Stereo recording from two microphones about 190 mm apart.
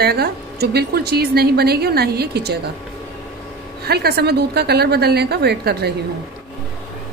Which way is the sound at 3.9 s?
55° right (ahead or behind).